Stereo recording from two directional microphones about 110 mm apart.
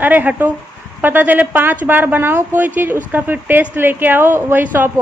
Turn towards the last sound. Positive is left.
turn(degrees=-20)  # may be behind; listen again after turning